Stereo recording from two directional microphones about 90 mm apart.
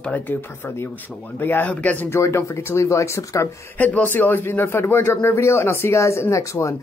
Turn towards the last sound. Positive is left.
turn(degrees=35)  # may be behind; listen again after turning